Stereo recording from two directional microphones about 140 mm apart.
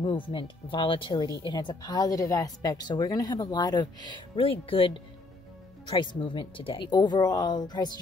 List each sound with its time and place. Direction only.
0.0 s speech: 35° left (ahead or behind)